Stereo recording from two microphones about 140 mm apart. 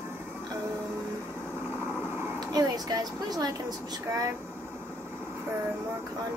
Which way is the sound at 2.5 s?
25° right (ahead or behind).